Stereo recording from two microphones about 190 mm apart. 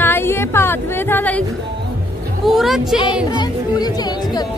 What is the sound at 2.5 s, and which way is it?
Speech, centre (ahead or behind).